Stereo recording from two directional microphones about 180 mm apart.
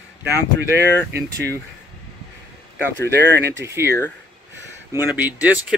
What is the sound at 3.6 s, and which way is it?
Speech, 15° right (ahead or behind).